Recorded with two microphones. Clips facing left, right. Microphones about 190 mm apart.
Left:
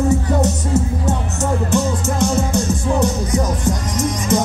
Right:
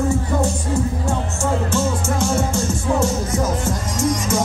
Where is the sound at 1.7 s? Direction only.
15° left (ahead or behind).